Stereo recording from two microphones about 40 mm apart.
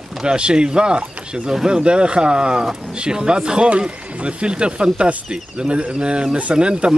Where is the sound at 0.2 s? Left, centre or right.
Right.